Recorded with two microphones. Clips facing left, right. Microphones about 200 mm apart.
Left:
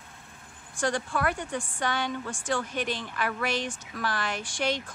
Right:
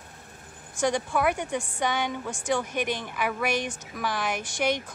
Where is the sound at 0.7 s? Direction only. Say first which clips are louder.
Right 3 dB; 15° right (ahead or behind).